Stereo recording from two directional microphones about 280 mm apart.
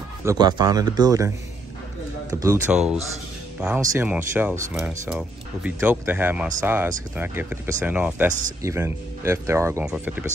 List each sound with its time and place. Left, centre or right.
0.2 s speech: centre
2.4 s speech: centre
8.3 s speech: right
8.6 s speech: centre